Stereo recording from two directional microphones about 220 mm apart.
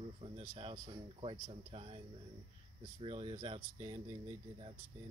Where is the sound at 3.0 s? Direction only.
25° right (ahead or behind).